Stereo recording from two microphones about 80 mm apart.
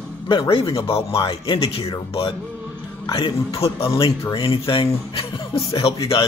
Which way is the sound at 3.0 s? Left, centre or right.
Left.